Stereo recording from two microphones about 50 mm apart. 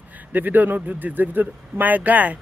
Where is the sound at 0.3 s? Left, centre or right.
Right.